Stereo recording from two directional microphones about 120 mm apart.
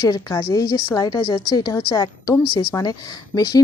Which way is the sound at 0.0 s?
30° left (ahead or behind).